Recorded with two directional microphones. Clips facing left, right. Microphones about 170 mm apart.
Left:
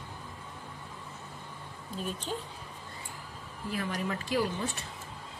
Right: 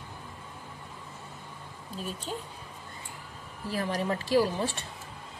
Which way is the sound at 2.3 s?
5° right (ahead or behind).